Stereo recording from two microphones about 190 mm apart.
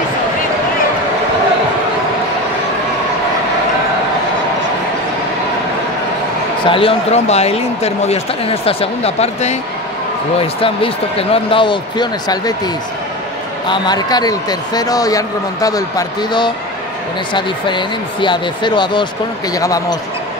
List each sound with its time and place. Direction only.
6.7 s a man's voice: 30° left (ahead or behind)
13.7 s a man's voice: 20° left (ahead or behind)